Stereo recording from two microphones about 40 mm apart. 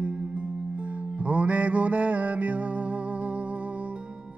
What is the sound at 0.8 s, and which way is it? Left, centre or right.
Music, right.